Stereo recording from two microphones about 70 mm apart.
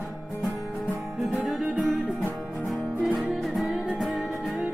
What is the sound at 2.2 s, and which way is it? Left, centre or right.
Music, centre.